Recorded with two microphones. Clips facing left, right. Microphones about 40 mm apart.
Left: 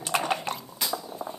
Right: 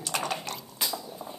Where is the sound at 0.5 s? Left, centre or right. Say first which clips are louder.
Left 2 dB; centre.